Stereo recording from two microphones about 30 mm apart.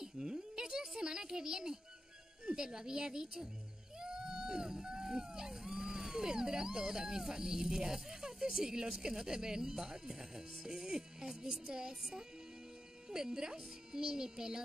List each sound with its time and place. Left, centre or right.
0.0 s a woman's voice: right
13.1 s speech: right